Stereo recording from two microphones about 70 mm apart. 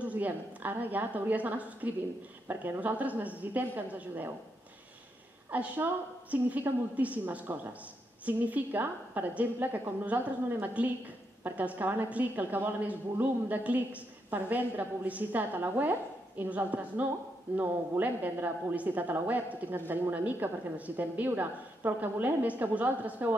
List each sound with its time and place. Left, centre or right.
0.0 s a woman's voice: right
5.5 s a woman's voice: right